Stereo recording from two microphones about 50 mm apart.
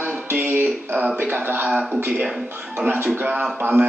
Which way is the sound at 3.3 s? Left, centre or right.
Centre.